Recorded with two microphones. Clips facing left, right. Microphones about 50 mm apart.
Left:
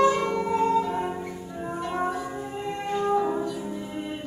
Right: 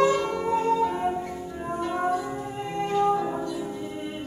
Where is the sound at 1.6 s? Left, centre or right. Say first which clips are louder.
Right 1 dB; centre.